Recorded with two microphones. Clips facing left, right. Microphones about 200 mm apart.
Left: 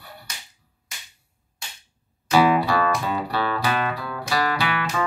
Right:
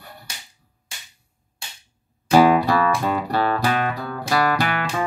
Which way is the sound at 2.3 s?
45° right (ahead or behind).